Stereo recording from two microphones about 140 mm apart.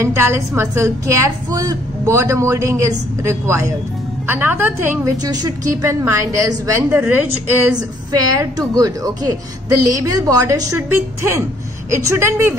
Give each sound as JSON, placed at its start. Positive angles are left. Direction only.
{"t": 0.0, "sound": "a woman's voice", "side_deg": -15}
{"t": 5.2, "sound": "a woman's voice", "side_deg": -30}
{"t": 8.4, "sound": "a woman's voice", "side_deg": -25}